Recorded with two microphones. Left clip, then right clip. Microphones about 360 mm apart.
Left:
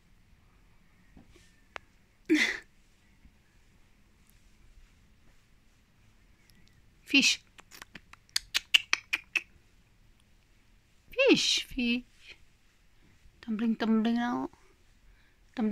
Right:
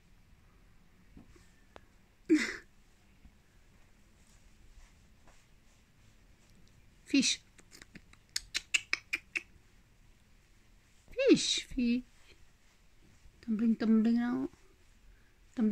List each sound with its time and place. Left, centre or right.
1.8 s hiccup: left
2.2 s a sound: centre
7.1 s typing: centre
11.1 s a sound: centre
13.4 s speech: centre
15.6 s speech: centre